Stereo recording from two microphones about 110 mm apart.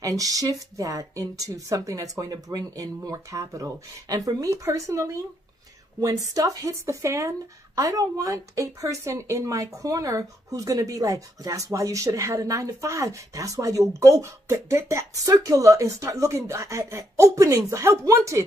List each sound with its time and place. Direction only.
0.0 s speech: 30° right (ahead or behind)